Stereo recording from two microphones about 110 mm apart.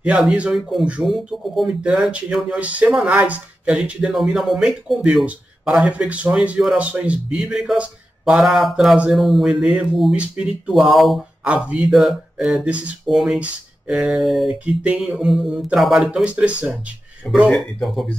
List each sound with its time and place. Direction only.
0.0 s a man's voice: 10° right (ahead or behind)
11.4 s a man's voice: 10° right (ahead or behind)
17.2 s speech: 10° left (ahead or behind)